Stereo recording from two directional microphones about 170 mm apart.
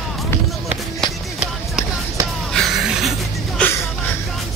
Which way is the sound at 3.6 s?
5° left (ahead or behind).